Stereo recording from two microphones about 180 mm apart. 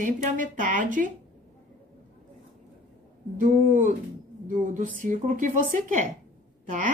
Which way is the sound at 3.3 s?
45° right (ahead or behind).